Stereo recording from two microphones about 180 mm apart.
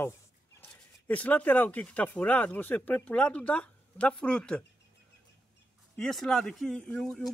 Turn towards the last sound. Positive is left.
turn(degrees=5)  # may be behind; listen again after turning